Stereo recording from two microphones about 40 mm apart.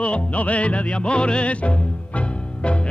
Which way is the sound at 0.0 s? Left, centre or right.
Left.